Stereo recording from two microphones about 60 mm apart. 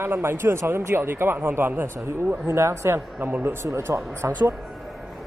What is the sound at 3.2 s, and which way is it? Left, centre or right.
Speech, right.